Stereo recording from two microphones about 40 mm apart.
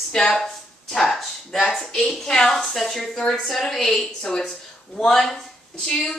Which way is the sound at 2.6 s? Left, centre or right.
Centre.